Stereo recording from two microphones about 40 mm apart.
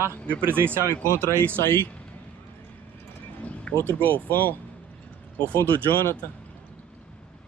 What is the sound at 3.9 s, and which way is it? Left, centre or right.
Speech, right.